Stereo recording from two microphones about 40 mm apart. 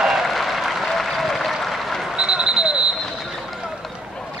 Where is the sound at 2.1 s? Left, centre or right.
Right.